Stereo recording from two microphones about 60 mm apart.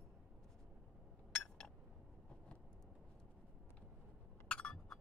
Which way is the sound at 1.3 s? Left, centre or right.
Centre.